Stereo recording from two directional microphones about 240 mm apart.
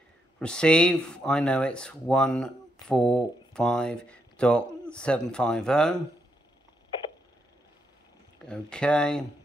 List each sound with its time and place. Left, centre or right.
0.4 s speech: centre
8.5 s speech: centre